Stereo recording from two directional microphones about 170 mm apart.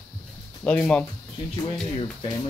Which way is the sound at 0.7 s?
5° left (ahead or behind).